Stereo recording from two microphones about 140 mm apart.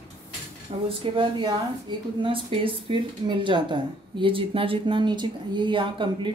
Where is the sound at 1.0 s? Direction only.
35° right (ahead or behind).